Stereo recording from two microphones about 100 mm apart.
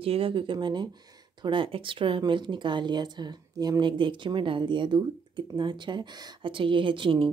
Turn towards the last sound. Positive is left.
turn(degrees=-55)  # may be behind; listen again after turning